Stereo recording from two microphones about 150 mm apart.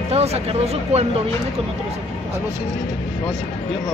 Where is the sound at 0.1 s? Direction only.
45° right (ahead or behind).